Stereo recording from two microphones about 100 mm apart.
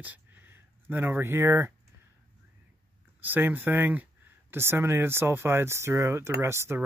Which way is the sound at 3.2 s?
20° right (ahead or behind).